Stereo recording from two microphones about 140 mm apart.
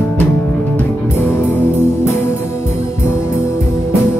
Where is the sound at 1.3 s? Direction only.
15° left (ahead or behind).